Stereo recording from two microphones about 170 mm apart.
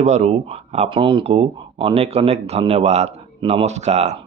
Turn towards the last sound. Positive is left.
turn(degrees=-40)  # may be behind; listen again after turning